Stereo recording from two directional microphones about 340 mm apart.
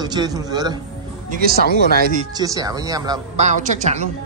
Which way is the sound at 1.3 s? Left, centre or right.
Right.